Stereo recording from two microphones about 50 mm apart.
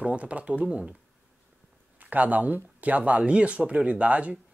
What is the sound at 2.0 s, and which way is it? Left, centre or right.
Speech, right.